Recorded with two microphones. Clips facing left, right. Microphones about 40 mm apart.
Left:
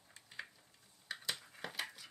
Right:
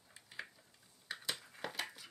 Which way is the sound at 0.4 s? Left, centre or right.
Centre.